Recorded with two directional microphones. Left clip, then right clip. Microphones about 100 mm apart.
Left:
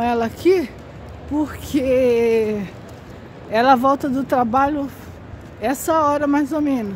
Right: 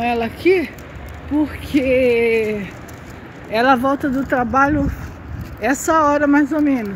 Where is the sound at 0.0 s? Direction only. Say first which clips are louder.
Right 1 dB; 40° left (ahead or behind).